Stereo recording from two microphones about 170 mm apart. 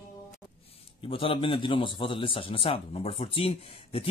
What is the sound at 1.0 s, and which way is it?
A man's voice, 30° left (ahead or behind).